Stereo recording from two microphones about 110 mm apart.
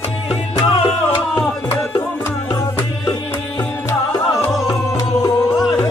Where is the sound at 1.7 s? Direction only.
25° left (ahead or behind).